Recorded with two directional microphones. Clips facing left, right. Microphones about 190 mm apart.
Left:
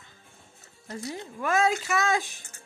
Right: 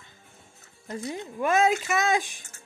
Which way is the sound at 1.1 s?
20° right (ahead or behind).